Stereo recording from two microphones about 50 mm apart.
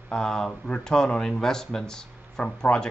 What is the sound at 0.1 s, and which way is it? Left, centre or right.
Speech, centre.